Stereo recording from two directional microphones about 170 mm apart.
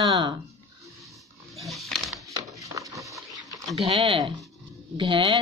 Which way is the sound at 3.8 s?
30° right (ahead or behind).